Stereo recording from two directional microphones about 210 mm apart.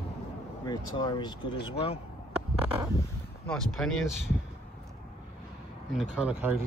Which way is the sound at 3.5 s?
Centre (ahead or behind).